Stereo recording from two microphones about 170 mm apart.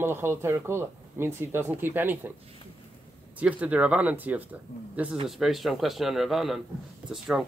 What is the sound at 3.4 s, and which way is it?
Speech, 10° right (ahead or behind).